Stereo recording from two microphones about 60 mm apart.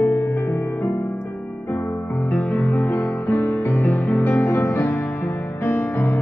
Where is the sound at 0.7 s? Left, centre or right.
Left.